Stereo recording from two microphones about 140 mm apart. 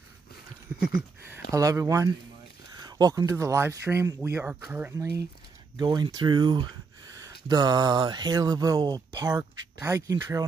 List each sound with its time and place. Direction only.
1.5 s speech: 25° right (ahead or behind)
4.9 s speech: 20° right (ahead or behind)
5.8 s speech: 30° right (ahead or behind)